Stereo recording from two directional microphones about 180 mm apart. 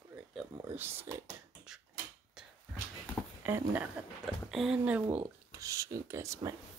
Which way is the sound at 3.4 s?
10° right (ahead or behind).